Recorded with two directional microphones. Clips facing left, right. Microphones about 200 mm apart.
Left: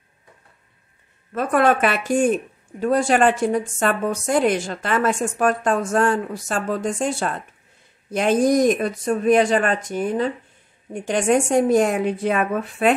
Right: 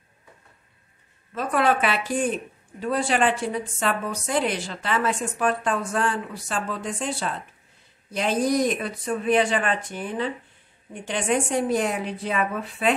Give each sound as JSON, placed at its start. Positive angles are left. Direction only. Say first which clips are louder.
{"t": 1.3, "sound": "speech", "louder": "left 4 dB", "side_deg": 50}